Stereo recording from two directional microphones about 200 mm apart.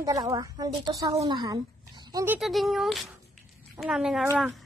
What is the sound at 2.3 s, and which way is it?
Speech, centre (ahead or behind).